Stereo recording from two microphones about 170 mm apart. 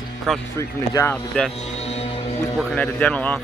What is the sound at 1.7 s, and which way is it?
Music, 40° left (ahead or behind).